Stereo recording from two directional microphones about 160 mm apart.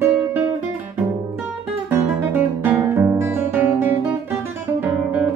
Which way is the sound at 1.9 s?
15° right (ahead or behind).